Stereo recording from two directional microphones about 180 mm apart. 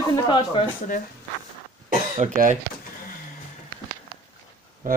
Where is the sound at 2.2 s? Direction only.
45° right (ahead or behind).